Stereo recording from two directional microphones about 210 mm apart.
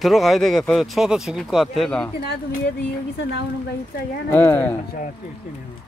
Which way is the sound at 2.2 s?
50° left (ahead or behind).